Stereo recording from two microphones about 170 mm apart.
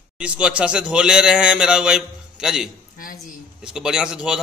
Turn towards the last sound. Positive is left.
turn(degrees=-5)  # may be behind; listen again after turning